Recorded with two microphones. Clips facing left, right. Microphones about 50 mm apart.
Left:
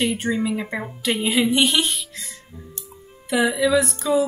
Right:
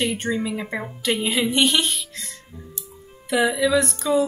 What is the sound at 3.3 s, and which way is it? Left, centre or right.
Speech, centre.